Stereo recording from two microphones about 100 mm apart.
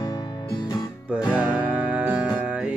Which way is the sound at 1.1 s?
10° right (ahead or behind).